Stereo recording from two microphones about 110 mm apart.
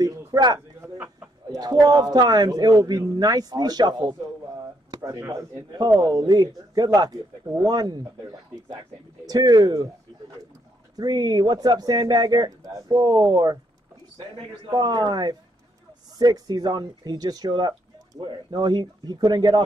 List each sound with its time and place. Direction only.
0.0 s a sound: 35° right (ahead or behind)
1.5 s speech: 35° right (ahead or behind)
5.0 s speech: 30° right (ahead or behind)
11.0 s speech: 40° right (ahead or behind)
14.7 s speech: 40° right (ahead or behind)